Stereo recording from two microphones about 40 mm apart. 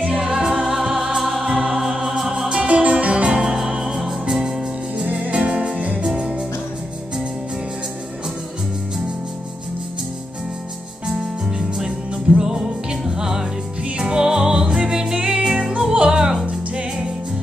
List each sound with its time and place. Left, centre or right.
0.2 s music: centre
1.4 s music: right
1.8 s music: centre
2.5 s music: right
3.3 s music: centre
4.9 s music: right
12.4 s music: centre